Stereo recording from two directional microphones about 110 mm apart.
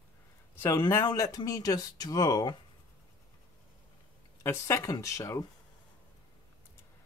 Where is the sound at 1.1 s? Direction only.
30° left (ahead or behind).